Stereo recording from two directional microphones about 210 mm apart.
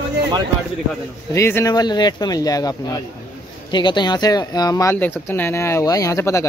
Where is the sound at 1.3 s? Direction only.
10° left (ahead or behind).